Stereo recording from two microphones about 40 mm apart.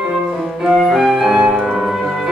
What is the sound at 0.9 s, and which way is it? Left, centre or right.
Music, centre.